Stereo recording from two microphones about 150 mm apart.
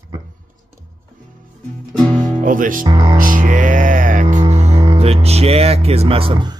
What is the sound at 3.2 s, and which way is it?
Music, 65° right (ahead or behind).